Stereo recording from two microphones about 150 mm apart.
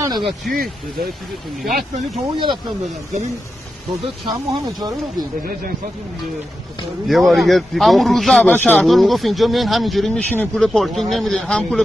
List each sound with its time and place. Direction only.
1.7 s speech: 70° right (ahead or behind)
2.2 s speech: 30° right (ahead or behind)
4.3 s speech: 25° right (ahead or behind)
7.1 s speech: centre (ahead or behind)